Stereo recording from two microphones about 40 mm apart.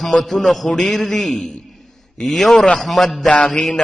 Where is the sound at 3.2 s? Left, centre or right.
Left.